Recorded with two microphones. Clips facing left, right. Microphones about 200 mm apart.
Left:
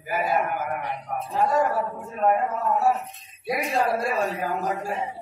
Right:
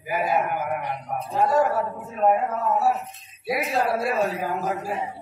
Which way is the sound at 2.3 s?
Centre (ahead or behind).